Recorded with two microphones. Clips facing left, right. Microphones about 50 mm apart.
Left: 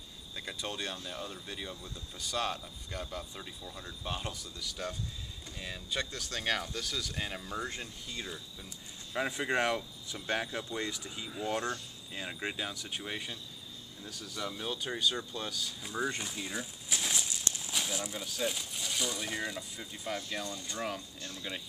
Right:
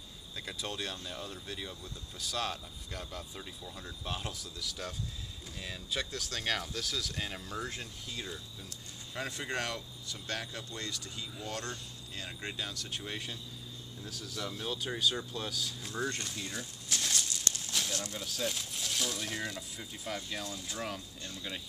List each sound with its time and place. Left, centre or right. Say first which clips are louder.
0.4 s speech: left 1 dB; centre
9.1 s speech: left 5 dB; centre